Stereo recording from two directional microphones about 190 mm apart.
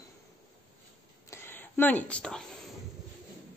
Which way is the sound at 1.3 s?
10° left (ahead or behind).